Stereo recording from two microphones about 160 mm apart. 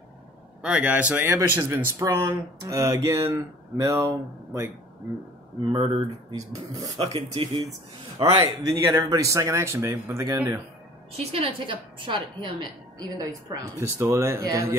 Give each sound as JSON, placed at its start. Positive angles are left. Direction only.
{"t": 0.6, "sound": "speech", "side_deg": -10}
{"t": 5.7, "sound": "speech", "side_deg": -30}
{"t": 7.2, "sound": "a woman's voice", "side_deg": -30}
{"t": 11.1, "sound": "a woman's voice", "side_deg": -35}